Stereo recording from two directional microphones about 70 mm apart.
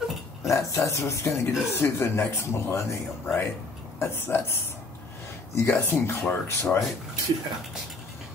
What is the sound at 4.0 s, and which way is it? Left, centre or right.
Speech, left.